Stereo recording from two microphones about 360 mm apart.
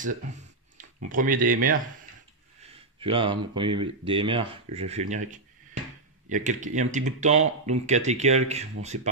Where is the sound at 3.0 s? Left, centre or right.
Centre.